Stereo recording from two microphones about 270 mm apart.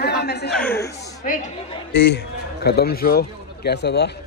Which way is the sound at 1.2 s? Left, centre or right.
Left.